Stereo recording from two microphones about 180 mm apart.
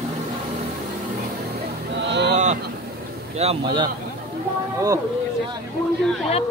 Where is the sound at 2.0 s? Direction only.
75° right (ahead or behind).